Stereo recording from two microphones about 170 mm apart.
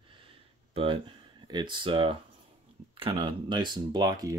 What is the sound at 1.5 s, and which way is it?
Speech, 30° right (ahead or behind).